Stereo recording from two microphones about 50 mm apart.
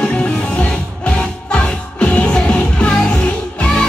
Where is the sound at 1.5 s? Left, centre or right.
Left.